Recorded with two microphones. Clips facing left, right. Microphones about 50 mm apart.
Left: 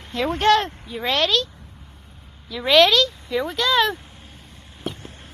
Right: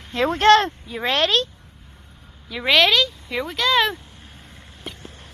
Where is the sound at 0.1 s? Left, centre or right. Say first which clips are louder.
Right 3 dB; right.